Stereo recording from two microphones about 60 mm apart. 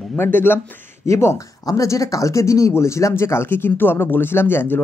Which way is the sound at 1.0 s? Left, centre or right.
Left.